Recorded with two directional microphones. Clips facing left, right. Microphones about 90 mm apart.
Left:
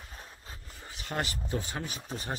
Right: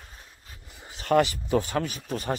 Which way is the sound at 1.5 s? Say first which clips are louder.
Right 10 dB; 80° right.